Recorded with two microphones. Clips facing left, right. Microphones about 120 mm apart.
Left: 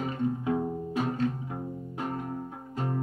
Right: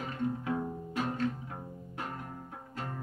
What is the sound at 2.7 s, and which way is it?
Music, 20° left (ahead or behind).